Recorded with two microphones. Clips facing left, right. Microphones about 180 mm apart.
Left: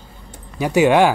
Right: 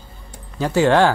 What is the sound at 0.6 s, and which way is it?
Speech, 15° left (ahead or behind).